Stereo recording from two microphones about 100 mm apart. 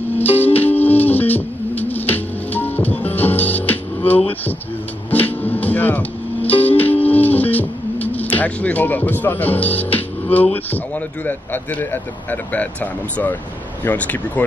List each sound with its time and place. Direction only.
0.1 s music: 20° left (ahead or behind)
11.2 s speech: 20° left (ahead or behind)
13.8 s speech: 15° left (ahead or behind)